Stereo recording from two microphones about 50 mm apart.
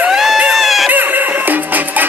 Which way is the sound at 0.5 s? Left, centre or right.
Centre.